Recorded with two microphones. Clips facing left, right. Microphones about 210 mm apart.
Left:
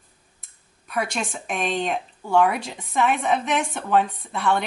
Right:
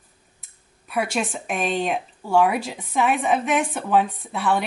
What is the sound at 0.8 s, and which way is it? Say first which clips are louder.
A woman's voice: right 2 dB; 5° right (ahead or behind).